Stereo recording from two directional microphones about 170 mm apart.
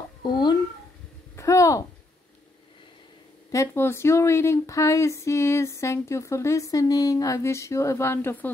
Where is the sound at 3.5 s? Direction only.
15° left (ahead or behind).